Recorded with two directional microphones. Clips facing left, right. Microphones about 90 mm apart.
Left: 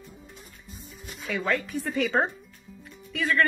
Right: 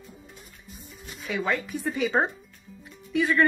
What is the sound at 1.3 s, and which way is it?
A woman's voice, 10° right (ahead or behind).